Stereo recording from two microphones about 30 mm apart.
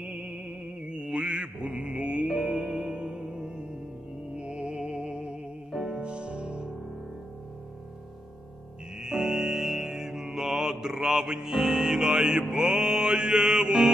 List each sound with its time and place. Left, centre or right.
0.0 s music: centre
0.8 s mantra: right
1.8 s music: right
2.6 s music: centre
3.0 s music: right
3.3 s music: right
4.4 s music: right
5.7 s music: centre
5.9 s music: right
9.0 s music: centre
11.0 s mantra: right
11.7 s music: right